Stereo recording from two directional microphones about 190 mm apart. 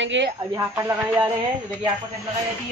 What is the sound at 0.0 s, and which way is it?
Speech, 70° right (ahead or behind).